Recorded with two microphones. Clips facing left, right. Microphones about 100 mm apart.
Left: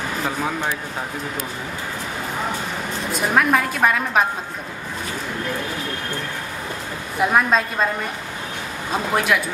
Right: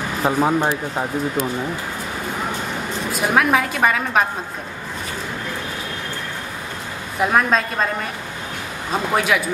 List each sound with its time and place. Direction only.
0.2 s speech: 30° right (ahead or behind)
3.1 s a woman's voice: 5° right (ahead or behind)
7.2 s a woman's voice: centre (ahead or behind)
9.1 s a woman's voice: centre (ahead or behind)